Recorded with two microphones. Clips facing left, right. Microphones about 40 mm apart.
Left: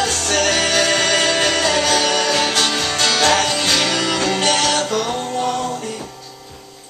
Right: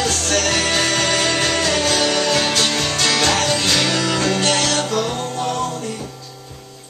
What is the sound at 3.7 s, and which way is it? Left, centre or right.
Music, left.